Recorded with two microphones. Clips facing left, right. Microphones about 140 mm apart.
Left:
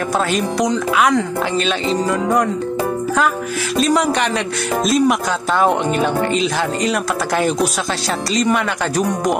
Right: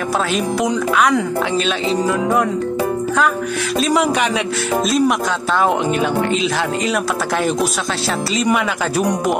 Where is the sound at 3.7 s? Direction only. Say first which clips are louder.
Left 1 dB; centre (ahead or behind).